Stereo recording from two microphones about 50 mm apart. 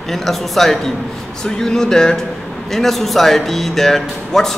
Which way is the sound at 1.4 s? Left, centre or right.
Centre.